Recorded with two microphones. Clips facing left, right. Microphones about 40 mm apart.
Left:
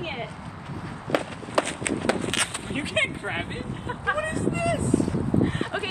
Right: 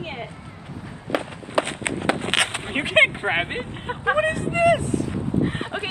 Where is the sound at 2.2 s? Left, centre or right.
Right.